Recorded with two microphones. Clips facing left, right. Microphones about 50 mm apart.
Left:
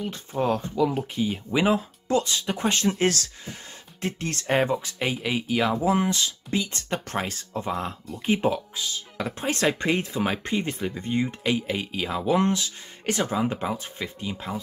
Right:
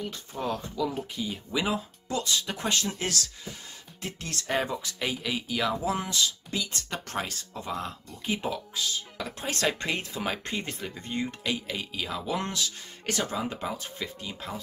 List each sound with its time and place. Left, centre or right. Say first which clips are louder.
0.1 s speech: left 7 dB; left
3.0 s speech: left 8 dB; left
8.8 s speech: left 1 dB; centre